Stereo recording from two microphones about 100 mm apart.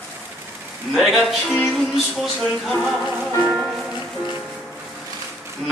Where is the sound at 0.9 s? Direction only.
Centre (ahead or behind).